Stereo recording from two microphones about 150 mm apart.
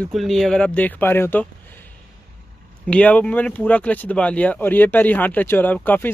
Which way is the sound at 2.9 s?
10° left (ahead or behind).